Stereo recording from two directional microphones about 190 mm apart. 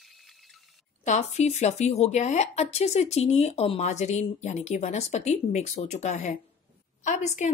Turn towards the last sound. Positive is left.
turn(degrees=40)  # may be behind; listen again after turning